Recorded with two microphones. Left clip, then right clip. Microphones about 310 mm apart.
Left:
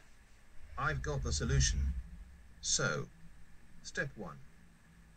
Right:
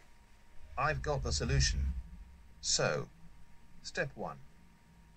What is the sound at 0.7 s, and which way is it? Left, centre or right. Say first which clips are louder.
Speech: right 4 dB; centre.